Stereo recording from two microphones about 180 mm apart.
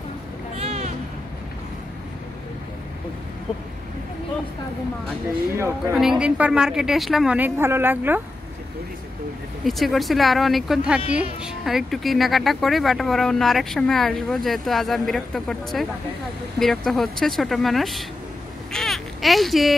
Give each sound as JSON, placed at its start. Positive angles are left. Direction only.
{"t": 0.6, "sound": "music", "side_deg": -35}
{"t": 5.9, "sound": "speech", "side_deg": -5}
{"t": 9.7, "sound": "speech", "side_deg": 0}
{"t": 18.7, "sound": "babbling", "side_deg": 0}